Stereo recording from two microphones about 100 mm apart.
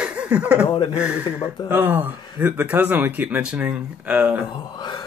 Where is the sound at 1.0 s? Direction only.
10° right (ahead or behind).